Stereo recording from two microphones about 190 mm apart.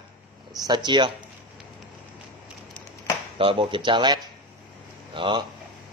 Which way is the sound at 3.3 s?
25° right (ahead or behind).